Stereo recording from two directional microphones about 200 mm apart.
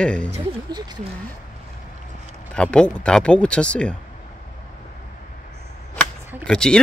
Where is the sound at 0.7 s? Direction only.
20° right (ahead or behind).